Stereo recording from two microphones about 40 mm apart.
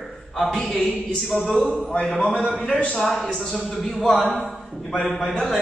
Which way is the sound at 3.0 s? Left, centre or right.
Centre.